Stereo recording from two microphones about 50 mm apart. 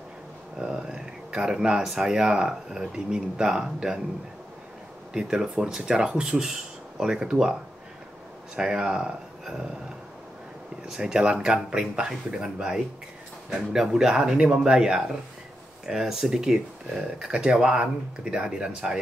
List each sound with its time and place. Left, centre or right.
0.6 s a sound: centre
1.9 s speech: centre
5.1 s speech: centre
8.5 s speech: centre
9.4 s a sound: centre
10.9 s speech: centre